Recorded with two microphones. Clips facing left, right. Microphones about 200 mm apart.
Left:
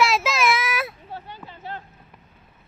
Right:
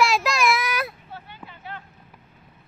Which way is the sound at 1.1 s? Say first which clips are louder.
Left 3 dB; 35° left (ahead or behind).